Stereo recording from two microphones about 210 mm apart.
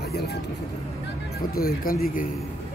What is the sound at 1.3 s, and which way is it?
Speech, 45° left (ahead or behind).